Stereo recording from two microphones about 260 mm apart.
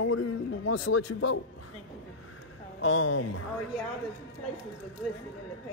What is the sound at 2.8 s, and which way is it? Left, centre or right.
Speech, left.